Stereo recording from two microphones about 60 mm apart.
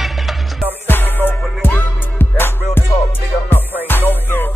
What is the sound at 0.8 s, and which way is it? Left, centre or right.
Music, left.